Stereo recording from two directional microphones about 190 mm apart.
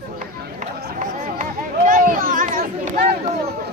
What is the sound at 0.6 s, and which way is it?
Run, 40° right (ahead or behind).